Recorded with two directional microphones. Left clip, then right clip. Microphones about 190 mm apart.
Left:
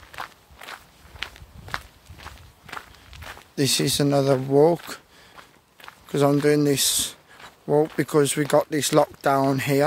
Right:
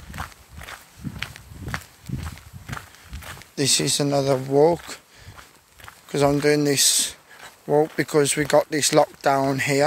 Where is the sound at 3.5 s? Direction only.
20° left (ahead or behind).